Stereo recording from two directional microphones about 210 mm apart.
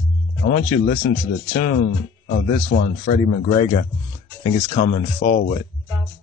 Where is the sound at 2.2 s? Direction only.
50° left (ahead or behind).